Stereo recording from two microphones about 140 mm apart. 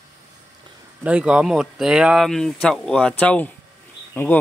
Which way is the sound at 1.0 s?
10° right (ahead or behind).